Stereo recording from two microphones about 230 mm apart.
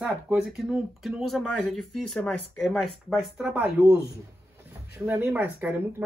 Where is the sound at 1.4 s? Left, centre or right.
Left.